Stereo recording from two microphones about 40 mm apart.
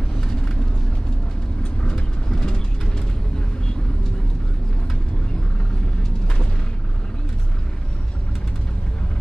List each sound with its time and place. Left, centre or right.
1.6 s vehicle: left